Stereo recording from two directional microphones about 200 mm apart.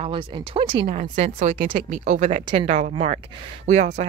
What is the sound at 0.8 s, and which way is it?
Speech, 40° right (ahead or behind).